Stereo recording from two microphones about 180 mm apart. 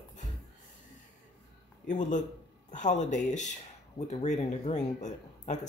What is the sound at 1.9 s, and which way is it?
Speech, 45° left (ahead or behind).